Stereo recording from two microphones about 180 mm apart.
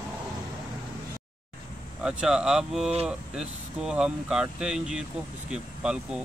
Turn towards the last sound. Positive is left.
turn(degrees=-5)  # may be behind; listen again after turning